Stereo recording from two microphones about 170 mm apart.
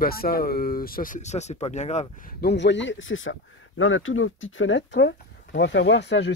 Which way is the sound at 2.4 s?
80° left.